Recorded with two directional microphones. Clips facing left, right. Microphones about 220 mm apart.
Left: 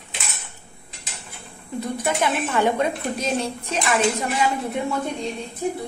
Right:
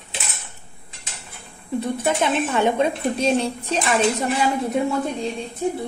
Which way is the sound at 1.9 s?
25° right (ahead or behind).